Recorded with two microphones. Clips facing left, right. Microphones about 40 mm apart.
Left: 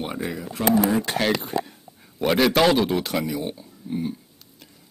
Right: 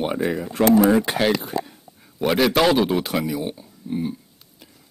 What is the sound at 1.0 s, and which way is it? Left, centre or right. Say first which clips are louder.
A man's voice: right 2 dB; centre.